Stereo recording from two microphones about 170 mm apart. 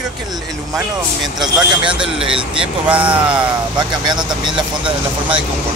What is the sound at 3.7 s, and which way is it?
Speech, 25° right (ahead or behind).